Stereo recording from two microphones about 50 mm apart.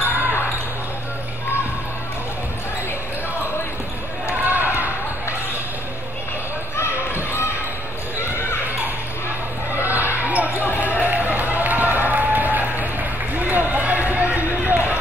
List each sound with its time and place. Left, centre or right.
4.5 s basketball bounce: right
6.8 s basketball bounce: left
8.2 s horse: left
9.8 s a sound: right
10.2 s basketball bounce: right
10.8 s a sound: right
13.5 s run: right